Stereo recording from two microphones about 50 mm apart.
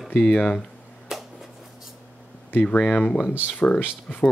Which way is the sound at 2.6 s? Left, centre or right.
Left.